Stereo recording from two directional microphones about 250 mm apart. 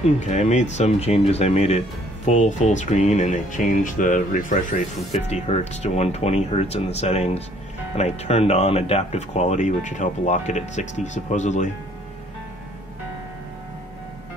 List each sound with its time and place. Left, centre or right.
0.2 s speech: left